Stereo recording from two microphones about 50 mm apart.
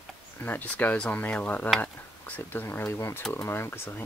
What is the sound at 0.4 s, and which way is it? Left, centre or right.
Speech, left.